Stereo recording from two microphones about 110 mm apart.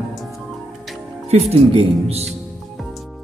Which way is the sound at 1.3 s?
70° right (ahead or behind).